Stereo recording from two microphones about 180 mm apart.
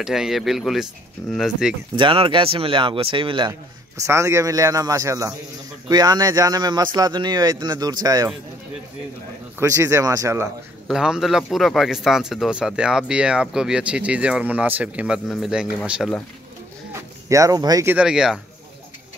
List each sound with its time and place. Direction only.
0.0 s a man's voice: 5° right (ahead or behind)
2.0 s speech: 30° right (ahead or behind)
4.0 s speech: 15° right (ahead or behind)
9.6 s speech: 15° right (ahead or behind)
10.9 s a man's voice: 5° right (ahead or behind)
16.9 s speech: 15° right (ahead or behind)
17.9 s a man's voice: 5° right (ahead or behind)